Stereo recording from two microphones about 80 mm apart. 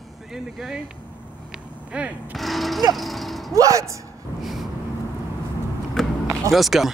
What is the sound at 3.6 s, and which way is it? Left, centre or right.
Speech, right.